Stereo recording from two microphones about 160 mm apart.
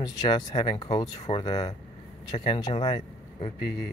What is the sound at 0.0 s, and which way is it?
Speech, 25° left (ahead or behind).